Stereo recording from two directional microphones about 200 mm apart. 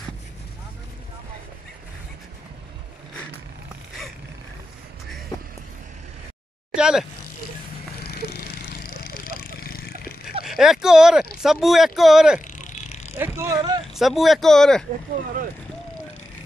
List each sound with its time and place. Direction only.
6.7 s a sound: 5° right (ahead or behind)
8.0 s vehicle: 50° left (ahead or behind)
10.4 s speech: centre (ahead or behind)
12.4 s a sound: 40° left (ahead or behind)
13.2 s vehicle: 15° right (ahead or behind)
13.9 s speech: centre (ahead or behind)